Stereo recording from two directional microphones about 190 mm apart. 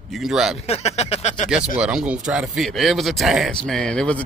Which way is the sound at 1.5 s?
5° right (ahead or behind).